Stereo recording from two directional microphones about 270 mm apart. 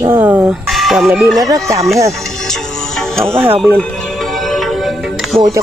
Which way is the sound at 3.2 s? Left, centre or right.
Centre.